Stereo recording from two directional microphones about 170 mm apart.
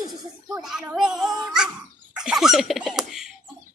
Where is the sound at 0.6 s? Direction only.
5° right (ahead or behind).